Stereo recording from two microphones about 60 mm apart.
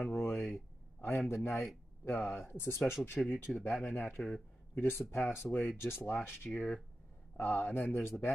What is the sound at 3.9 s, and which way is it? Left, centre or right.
Speech, left.